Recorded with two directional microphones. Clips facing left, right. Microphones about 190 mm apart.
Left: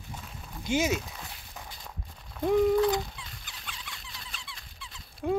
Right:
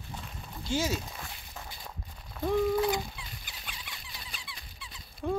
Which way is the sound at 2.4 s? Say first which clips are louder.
Left 3 dB; 5° right (ahead or behind).